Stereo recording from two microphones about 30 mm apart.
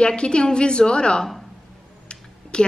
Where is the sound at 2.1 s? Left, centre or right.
Left.